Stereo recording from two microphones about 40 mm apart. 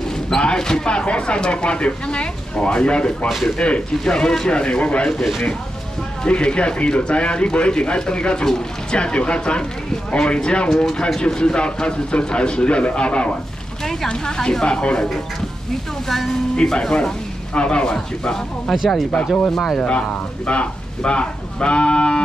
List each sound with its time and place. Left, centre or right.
0.3 s speech: left
3.3 s speech: centre
3.5 s speech: left
4.0 s speech: centre
6.2 s speech: left
14.0 s speech: centre
16.5 s speech: centre
18.7 s speech: centre
19.8 s speech: left